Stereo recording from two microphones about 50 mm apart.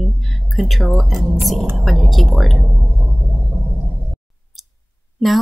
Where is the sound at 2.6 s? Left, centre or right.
Right.